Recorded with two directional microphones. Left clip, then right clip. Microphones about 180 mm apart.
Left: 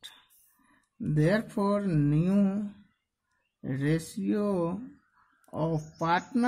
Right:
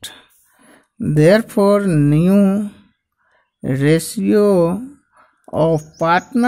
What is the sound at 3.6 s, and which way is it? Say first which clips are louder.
Speech: right 15 dB; 45° right (ahead or behind).